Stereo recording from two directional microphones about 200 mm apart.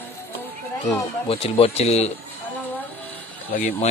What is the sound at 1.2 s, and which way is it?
Speech, 30° left (ahead or behind).